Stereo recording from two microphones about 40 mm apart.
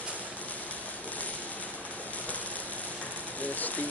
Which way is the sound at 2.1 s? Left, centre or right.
Left.